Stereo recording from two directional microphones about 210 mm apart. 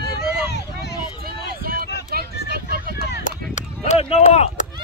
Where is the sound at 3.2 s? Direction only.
35° left (ahead or behind).